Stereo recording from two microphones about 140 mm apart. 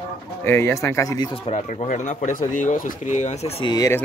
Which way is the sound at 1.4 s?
55° left (ahead or behind).